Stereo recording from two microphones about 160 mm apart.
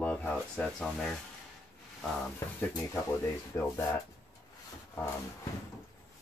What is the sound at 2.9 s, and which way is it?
Speech, 15° left (ahead or behind).